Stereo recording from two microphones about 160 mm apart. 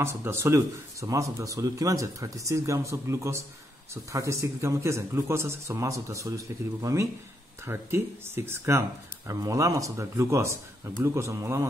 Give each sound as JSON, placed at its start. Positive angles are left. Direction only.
{"t": 0.0, "sound": "speech", "side_deg": -15}